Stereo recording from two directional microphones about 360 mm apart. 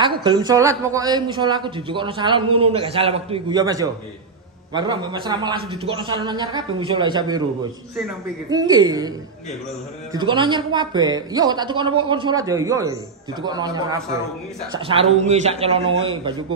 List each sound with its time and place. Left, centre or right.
0.0 s speech: centre
8.5 s speech: centre
10.1 s speech: centre